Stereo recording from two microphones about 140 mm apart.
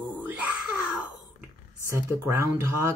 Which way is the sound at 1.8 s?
20° right (ahead or behind).